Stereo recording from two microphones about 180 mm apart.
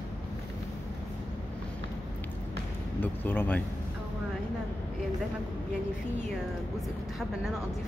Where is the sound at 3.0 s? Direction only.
10° left (ahead or behind).